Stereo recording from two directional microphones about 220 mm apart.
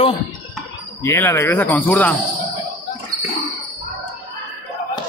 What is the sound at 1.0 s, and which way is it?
A man's voice, 10° left (ahead or behind).